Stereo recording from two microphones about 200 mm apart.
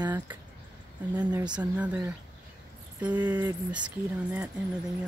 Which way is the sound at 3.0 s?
10° right (ahead or behind).